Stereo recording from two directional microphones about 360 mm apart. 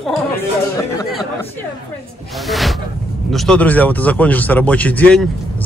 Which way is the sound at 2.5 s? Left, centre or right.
Centre.